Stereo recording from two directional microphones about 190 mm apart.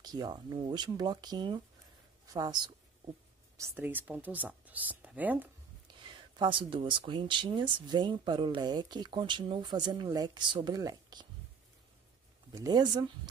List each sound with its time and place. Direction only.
0.0 s speech: 20° right (ahead or behind)
6.3 s speech: 25° right (ahead or behind)
12.5 s speech: 20° right (ahead or behind)